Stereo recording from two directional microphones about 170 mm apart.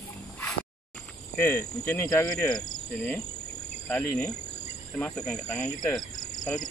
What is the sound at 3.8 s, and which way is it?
Speech, 10° left (ahead or behind).